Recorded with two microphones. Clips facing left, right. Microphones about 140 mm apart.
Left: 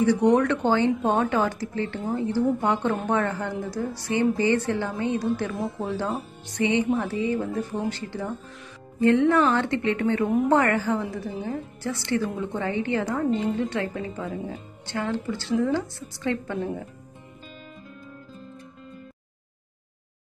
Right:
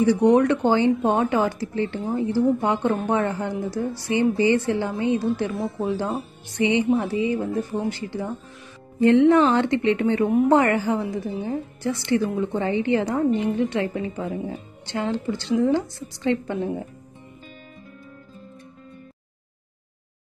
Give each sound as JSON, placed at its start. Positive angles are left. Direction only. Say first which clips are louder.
{"t": 0.0, "sound": "a woman's voice", "louder": "right 3 dB", "side_deg": -10}